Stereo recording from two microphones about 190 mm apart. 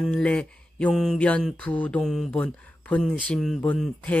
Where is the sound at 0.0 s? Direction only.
5° left (ahead or behind).